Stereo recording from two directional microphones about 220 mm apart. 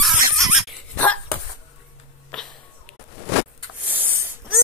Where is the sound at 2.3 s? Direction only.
5° left (ahead or behind).